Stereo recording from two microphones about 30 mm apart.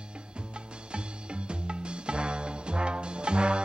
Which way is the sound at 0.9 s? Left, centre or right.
Right.